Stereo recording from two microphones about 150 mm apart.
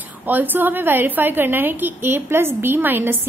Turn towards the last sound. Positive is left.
turn(degrees=-15)  # may be behind; listen again after turning